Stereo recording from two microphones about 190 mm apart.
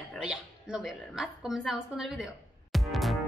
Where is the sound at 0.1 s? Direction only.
5° right (ahead or behind).